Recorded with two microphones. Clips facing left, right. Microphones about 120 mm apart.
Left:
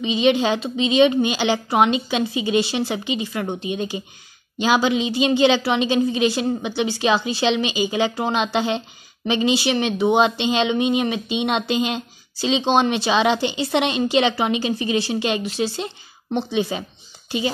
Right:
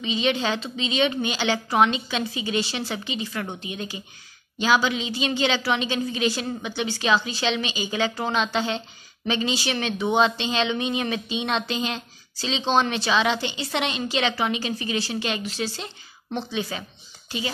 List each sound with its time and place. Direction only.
0.0 s speech: 20° left (ahead or behind)